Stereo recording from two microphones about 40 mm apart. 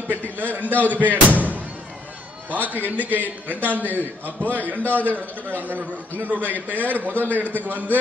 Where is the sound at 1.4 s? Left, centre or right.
Right.